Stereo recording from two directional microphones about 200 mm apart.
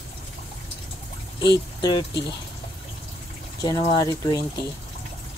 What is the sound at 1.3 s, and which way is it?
Speech, 20° left (ahead or behind).